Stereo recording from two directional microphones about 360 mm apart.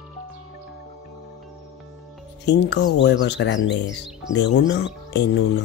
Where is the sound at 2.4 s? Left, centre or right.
Left.